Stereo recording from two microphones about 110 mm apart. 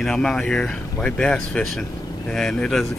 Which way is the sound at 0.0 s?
5° left (ahead or behind).